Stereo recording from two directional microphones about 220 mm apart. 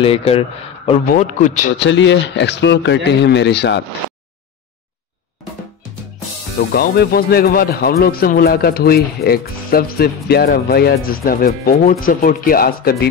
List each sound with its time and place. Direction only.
0.0 s a man's voice: 25° left (ahead or behind)
1.8 s speech: 55° left (ahead or behind)
6.7 s speech: 45° left (ahead or behind)